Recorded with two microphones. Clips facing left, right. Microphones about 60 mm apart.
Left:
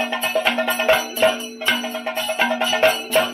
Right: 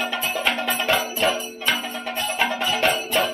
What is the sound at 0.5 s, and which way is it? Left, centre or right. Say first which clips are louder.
Music: left 4 dB; left.